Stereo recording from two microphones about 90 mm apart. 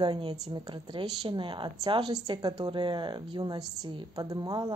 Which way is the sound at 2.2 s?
50° right (ahead or behind).